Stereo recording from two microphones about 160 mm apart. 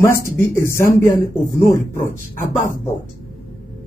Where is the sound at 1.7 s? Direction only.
15° left (ahead or behind).